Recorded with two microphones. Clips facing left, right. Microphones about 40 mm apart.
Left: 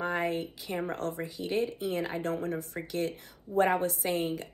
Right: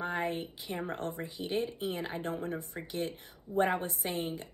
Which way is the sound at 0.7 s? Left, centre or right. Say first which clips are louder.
Left 4 dB; left.